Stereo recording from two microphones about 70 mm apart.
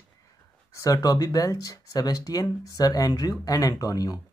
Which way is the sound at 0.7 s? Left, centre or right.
Left.